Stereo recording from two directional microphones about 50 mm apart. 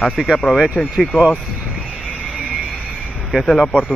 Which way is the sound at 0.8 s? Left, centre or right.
Centre.